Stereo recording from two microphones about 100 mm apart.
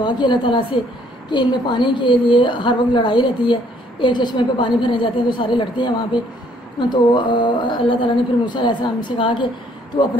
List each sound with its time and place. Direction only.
0.0 s a woman's voice: 50° left (ahead or behind)